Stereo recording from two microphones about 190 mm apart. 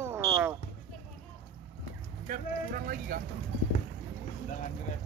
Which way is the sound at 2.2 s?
50° right (ahead or behind).